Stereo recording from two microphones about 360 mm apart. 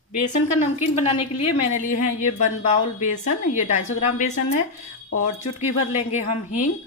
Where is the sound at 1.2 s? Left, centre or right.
Left.